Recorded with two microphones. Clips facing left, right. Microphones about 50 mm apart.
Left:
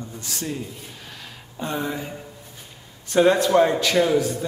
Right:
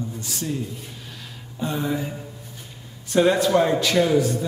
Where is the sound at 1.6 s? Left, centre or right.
Centre.